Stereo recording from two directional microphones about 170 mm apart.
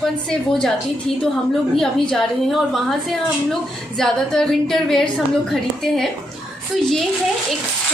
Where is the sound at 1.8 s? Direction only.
Centre (ahead or behind).